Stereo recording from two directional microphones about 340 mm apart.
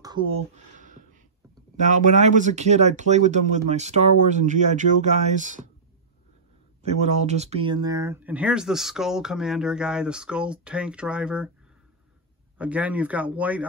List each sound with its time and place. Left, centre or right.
0.0 s speech: centre
6.8 s speech: centre
12.5 s speech: centre